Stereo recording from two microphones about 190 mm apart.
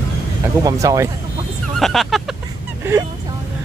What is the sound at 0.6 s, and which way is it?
Speech, 15° right (ahead or behind).